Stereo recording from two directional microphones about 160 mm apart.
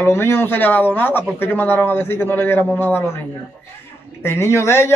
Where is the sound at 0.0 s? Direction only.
15° left (ahead or behind).